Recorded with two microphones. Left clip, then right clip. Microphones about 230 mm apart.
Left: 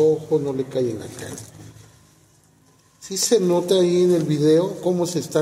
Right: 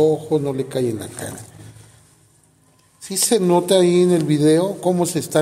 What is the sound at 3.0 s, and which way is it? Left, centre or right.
A man's voice, right.